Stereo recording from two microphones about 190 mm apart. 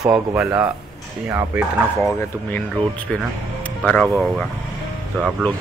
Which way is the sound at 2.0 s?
10° left (ahead or behind).